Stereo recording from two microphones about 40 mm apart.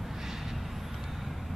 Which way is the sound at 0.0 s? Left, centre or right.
Centre.